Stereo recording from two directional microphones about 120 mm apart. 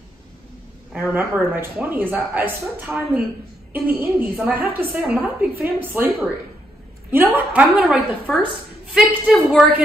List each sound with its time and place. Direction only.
0.9 s speech: 15° right (ahead or behind)
7.9 s a woman's voice: 5° right (ahead or behind)